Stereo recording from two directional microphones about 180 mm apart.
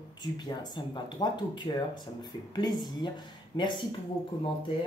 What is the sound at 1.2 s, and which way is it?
Speech, 25° left (ahead or behind).